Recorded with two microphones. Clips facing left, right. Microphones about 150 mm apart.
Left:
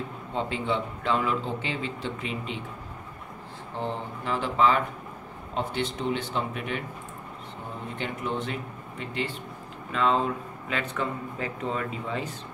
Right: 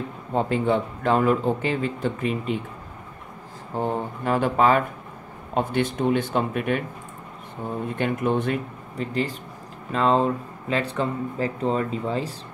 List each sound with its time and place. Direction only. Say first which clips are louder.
0.3 s a man's voice: right 7 dB; 50° right (ahead or behind)
3.7 s a man's voice: right 6 dB; 50° right (ahead or behind)
7.9 s speech: right 8 dB; 55° right (ahead or behind)
8.9 s speech: right 6 dB; 40° right (ahead or behind)